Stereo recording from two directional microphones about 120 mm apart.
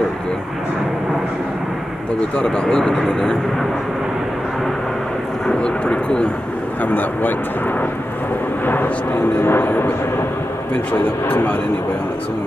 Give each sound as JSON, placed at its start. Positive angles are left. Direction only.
{"t": 2.4, "sound": "speech", "side_deg": 5}
{"t": 5.6, "sound": "speech", "side_deg": 10}
{"t": 8.6, "sound": "speech", "side_deg": 15}
{"t": 10.9, "sound": "speech", "side_deg": 10}